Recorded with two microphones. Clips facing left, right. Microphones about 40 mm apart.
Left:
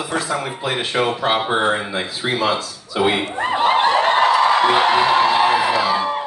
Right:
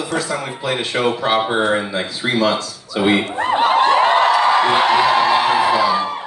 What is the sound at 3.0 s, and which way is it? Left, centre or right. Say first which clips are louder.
Speech: right 2 dB; centre.